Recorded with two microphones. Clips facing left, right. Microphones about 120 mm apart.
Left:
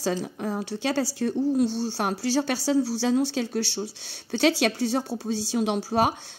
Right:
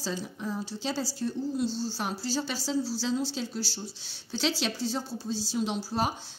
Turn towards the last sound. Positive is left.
turn(degrees=65)  # may be behind; listen again after turning